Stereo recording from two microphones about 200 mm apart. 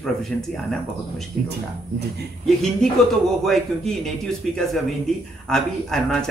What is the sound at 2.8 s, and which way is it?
A man's voice, 5° left (ahead or behind).